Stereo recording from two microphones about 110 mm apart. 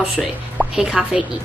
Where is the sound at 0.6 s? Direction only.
5° right (ahead or behind).